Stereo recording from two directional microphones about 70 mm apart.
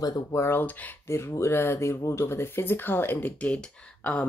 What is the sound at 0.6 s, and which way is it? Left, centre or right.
Speech, left.